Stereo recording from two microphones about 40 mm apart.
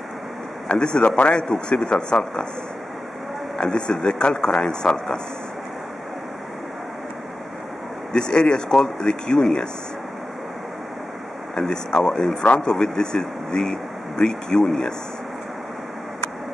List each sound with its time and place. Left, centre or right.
0.7 s speech: left
1.8 s speech: centre
3.5 s speech: left
8.1 s speech: left
11.6 s speech: centre